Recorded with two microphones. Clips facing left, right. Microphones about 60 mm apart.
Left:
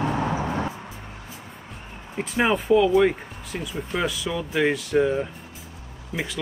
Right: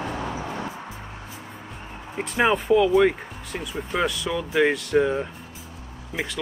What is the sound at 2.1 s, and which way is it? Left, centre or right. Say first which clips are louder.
Speech: right 1 dB; centre.